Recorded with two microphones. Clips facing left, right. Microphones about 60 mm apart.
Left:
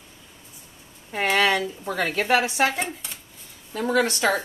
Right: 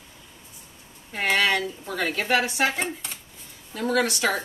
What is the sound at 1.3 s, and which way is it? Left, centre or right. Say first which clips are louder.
Speech: left 2 dB; left.